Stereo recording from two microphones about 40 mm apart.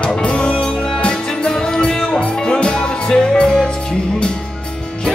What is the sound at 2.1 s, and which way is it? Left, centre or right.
Music, left.